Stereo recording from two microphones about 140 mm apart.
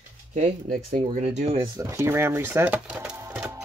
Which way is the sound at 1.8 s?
20° right (ahead or behind).